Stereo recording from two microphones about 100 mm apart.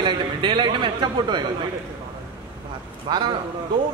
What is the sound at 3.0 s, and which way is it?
Speech, 45° right (ahead or behind).